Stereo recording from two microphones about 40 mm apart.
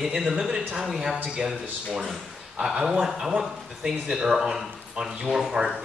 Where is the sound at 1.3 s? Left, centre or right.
Right.